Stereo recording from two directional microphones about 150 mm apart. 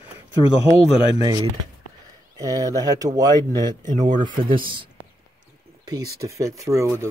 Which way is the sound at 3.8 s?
60° right (ahead or behind).